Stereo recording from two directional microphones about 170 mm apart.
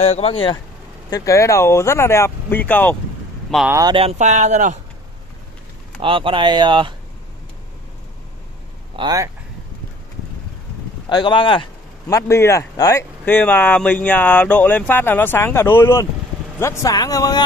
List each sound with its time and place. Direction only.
0.0 s speech: 35° left (ahead or behind)
1.1 s speech: 20° left (ahead or behind)
3.6 s speech: 15° right (ahead or behind)
3.9 s speech: 35° right (ahead or behind)
5.9 s speech: 30° right (ahead or behind)
8.9 s speech: 25° right (ahead or behind)
11.1 s speech: 25° left (ahead or behind)
12.1 s speech: 15° left (ahead or behind)